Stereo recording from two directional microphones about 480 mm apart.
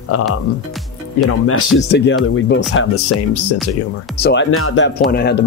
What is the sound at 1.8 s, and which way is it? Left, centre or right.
Speech, left.